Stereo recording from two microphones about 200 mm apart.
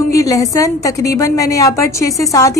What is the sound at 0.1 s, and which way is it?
A woman's voice, 15° left (ahead or behind).